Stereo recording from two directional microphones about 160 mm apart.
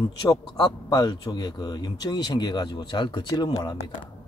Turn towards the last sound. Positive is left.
turn(degrees=25)  # may be behind; listen again after turning